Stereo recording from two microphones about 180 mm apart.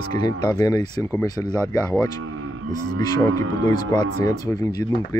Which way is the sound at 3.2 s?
20° left (ahead or behind).